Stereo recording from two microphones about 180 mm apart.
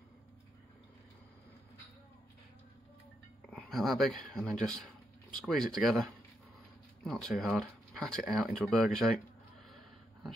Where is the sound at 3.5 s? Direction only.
5° left (ahead or behind).